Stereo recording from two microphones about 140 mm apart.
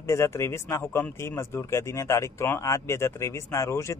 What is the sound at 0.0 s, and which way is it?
A man's voice, 20° left (ahead or behind).